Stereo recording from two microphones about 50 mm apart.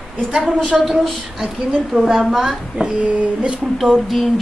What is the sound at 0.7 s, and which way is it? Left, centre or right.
A man's voice, centre.